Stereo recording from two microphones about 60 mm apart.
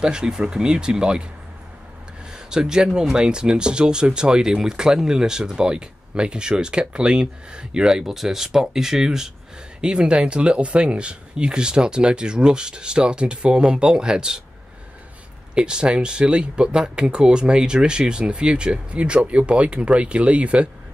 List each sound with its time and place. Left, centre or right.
0.0 s speech: centre
2.3 s speech: centre
15.5 s speech: centre